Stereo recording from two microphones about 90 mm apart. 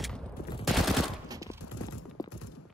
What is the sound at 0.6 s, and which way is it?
Machine gun, centre (ahead or behind).